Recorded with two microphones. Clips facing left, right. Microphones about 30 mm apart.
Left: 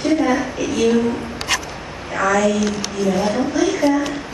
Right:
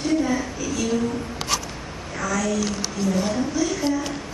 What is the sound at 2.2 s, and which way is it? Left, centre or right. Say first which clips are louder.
A woman's voice: left 8 dB; left.